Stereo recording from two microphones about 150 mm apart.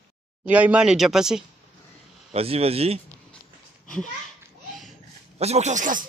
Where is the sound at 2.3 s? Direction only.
40° right (ahead or behind).